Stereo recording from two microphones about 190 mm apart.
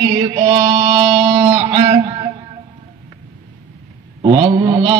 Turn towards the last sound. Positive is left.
turn(degrees=-25)  # may be behind; listen again after turning